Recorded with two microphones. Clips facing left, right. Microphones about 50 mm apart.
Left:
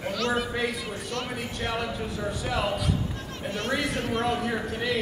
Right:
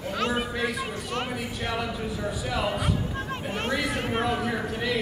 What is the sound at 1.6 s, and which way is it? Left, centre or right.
A man's voice, centre.